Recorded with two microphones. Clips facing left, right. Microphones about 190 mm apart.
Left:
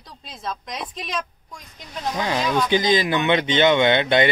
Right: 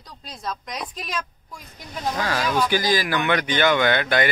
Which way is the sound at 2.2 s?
20° left (ahead or behind).